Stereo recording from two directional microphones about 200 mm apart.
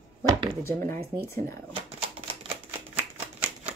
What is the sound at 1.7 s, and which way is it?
Shuffling cards, 30° right (ahead or behind).